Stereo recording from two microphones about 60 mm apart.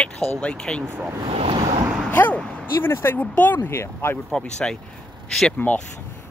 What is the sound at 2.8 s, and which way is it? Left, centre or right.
Speech, left.